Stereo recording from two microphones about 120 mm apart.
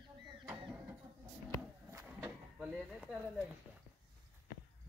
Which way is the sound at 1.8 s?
25° right (ahead or behind).